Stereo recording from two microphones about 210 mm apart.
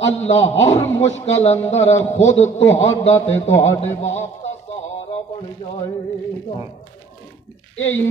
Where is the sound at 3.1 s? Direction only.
10° left (ahead or behind).